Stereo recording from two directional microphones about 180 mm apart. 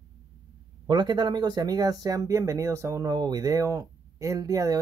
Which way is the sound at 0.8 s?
25° right (ahead or behind).